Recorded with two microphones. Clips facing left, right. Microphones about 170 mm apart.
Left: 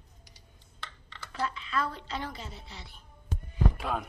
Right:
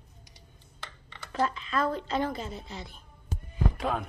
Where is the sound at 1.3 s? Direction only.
45° right (ahead or behind).